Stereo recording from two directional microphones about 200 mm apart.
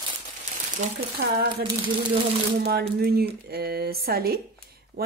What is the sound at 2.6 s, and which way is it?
Speech, 50° right (ahead or behind).